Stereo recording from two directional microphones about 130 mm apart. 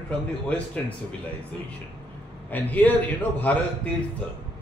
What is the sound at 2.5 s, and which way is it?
A man's voice, 15° left (ahead or behind).